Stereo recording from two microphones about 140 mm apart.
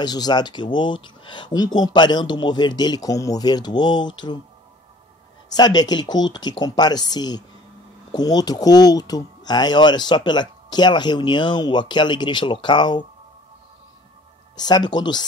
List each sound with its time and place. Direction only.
0.0 s speech: 30° left (ahead or behind)
5.5 s speech: 30° left (ahead or behind)
14.6 s speech: 30° left (ahead or behind)